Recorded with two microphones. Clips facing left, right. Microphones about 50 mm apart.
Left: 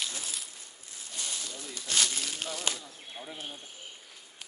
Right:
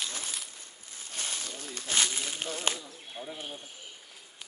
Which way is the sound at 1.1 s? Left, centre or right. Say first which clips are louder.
Right 1 dB; right.